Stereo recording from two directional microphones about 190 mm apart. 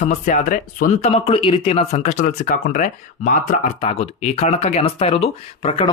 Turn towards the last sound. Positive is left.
turn(degrees=30)  # may be behind; listen again after turning